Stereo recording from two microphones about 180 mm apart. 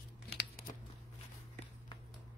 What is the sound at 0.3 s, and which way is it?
Tearing, 60° left (ahead or behind).